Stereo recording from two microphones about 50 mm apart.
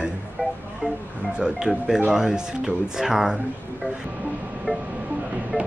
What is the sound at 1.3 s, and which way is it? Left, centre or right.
Speech, centre.